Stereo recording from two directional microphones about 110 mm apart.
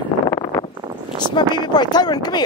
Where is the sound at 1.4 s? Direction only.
40° left (ahead or behind).